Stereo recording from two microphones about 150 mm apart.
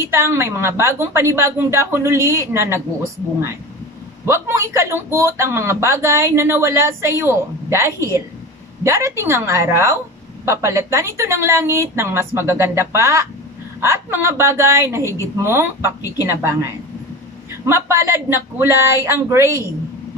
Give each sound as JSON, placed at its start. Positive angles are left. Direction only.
{"t": 0.0, "sound": "a man's voice", "side_deg": -15}
{"t": 4.3, "sound": "a man's voice", "side_deg": -20}
{"t": 17.6, "sound": "a man's voice", "side_deg": -20}